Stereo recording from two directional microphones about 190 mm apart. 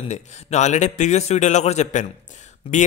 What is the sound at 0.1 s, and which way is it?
Speech, 35° left (ahead or behind).